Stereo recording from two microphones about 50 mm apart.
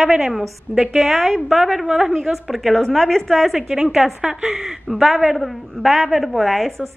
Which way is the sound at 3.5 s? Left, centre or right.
Centre.